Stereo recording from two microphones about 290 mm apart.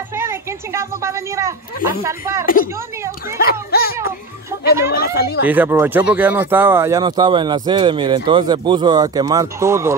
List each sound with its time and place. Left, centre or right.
0.1 s a woman's voice: centre
2.4 s speech: left
4.9 s speech: left
5.4 s speech: centre